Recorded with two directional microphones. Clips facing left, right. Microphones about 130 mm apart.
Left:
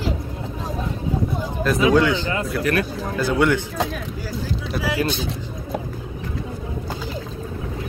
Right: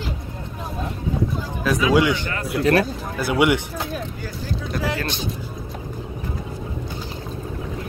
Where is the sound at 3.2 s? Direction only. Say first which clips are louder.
Even; 15° right (ahead or behind).